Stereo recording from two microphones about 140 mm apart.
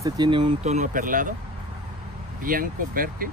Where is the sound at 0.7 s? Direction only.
65° right (ahead or behind).